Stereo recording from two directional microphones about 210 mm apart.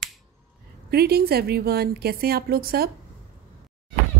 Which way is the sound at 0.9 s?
50° right (ahead or behind).